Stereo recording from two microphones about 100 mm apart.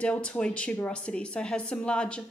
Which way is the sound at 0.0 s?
10° left (ahead or behind).